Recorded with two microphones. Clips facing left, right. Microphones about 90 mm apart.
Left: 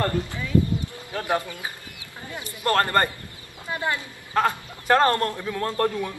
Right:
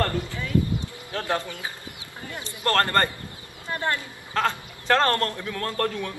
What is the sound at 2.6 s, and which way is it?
A man's voice, 15° left (ahead or behind).